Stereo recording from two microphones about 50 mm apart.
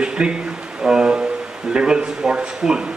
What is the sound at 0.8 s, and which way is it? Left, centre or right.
Music, centre.